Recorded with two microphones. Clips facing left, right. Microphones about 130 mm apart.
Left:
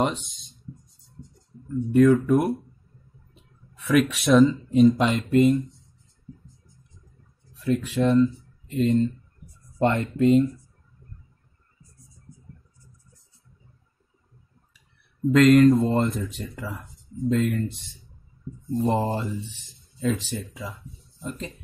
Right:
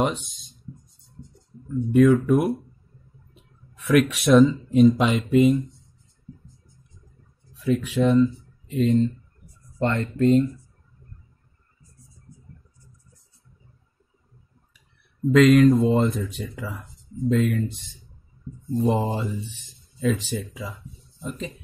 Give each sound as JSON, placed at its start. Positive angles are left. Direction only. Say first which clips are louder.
{"t": 0.0, "sound": "a sound", "louder": "right 1 dB", "side_deg": 0}
{"t": 3.9, "sound": "speech", "louder": "right 2 dB", "side_deg": 0}
{"t": 7.4, "sound": "speech", "louder": "right 1 dB", "side_deg": 0}
{"t": 9.8, "sound": "speech", "louder": "left 2 dB", "side_deg": 20}
{"t": 10.1, "sound": "speech", "louder": "right 1 dB", "side_deg": 5}
{"t": 15.3, "sound": "speech", "louder": "even", "side_deg": 0}